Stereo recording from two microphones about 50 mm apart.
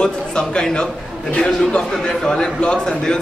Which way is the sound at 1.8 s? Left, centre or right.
Centre.